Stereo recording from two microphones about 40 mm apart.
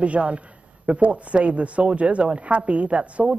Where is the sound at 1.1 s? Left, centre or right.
Right.